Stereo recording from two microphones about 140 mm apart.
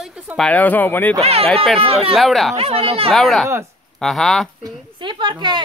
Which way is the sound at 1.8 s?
45° right (ahead or behind).